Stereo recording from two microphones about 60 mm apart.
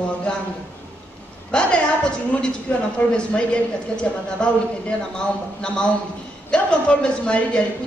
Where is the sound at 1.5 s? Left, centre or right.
Centre.